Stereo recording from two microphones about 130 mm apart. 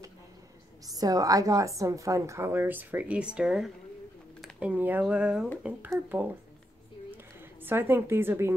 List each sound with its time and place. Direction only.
0.8 s a woman's voice: 30° right (ahead or behind)
7.6 s a woman's voice: 15° right (ahead or behind)